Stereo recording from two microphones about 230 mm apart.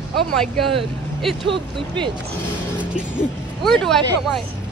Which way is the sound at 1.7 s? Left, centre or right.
Right.